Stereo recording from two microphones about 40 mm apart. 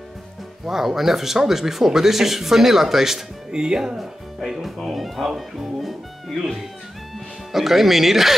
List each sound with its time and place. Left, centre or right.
0.7 s speech: centre
4.0 s speech: centre